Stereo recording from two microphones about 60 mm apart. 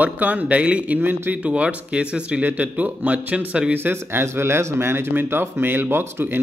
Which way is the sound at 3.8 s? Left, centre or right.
Right.